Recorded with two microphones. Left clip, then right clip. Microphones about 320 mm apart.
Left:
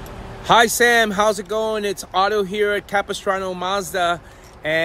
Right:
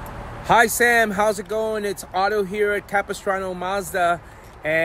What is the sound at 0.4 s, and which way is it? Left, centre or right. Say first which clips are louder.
Speech: left 2 dB; centre.